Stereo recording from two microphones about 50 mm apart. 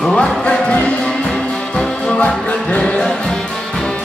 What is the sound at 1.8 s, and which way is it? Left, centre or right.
Music, left.